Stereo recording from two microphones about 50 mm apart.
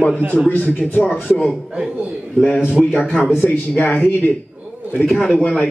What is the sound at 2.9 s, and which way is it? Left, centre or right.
Speech, left.